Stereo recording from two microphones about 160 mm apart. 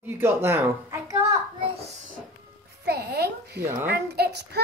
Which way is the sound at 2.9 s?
90° right.